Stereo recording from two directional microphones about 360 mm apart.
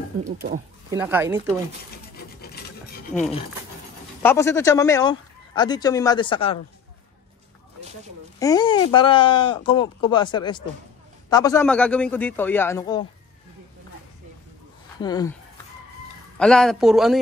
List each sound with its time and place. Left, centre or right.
0.2 s speech: right
0.8 s speech: centre
4.2 s speech: centre
8.4 s a man's voice: centre
15.0 s speech: centre
16.3 s a man's voice: centre